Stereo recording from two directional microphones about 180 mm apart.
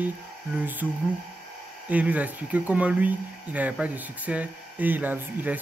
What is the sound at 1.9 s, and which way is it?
Speech, 10° right (ahead or behind).